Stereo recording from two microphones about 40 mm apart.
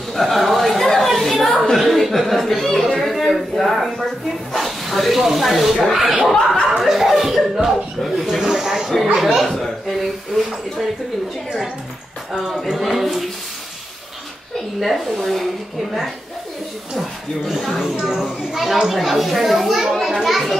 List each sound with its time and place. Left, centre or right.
0.1 s a sound: centre
4.5 s a child's voice: centre
8.5 s a sound: centre
12.4 s speech: centre
12.9 s a child's voice: centre
14.8 s a child's voice: centre
17.5 s a child's voice: centre
17.9 s speech: centre
18.2 s a child's voice: centre